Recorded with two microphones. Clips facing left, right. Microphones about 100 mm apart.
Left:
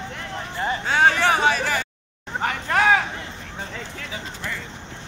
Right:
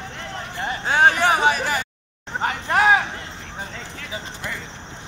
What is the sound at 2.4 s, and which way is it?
Hubbub, 25° right (ahead or behind).